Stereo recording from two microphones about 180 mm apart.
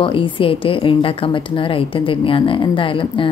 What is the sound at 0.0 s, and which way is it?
A woman's voice, 30° left (ahead or behind).